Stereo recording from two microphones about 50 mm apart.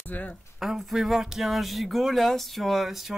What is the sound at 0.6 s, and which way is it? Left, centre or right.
Speech, centre.